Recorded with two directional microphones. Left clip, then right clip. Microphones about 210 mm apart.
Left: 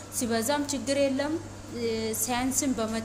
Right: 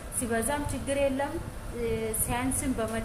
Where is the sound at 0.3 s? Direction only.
55° left (ahead or behind).